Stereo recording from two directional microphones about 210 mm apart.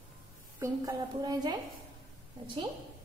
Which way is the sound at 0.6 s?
15° right (ahead or behind).